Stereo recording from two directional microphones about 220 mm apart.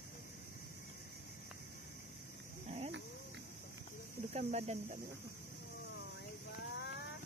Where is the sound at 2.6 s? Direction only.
30° right (ahead or behind).